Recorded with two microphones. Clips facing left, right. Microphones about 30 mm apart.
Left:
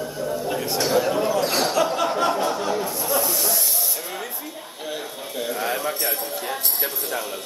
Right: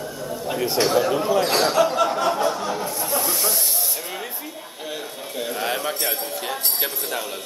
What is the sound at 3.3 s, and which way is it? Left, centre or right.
Snake, right.